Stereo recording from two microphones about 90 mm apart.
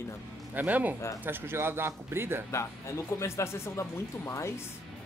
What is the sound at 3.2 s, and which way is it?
Speech, 30° left (ahead or behind).